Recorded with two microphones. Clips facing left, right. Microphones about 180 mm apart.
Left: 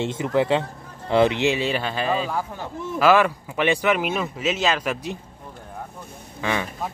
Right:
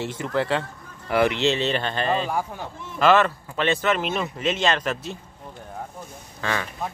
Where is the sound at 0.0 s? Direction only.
20° left (ahead or behind).